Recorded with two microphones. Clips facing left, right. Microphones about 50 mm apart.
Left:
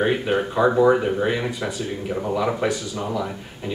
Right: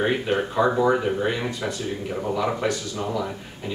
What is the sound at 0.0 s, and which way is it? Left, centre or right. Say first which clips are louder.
Speech: left 2 dB; centre.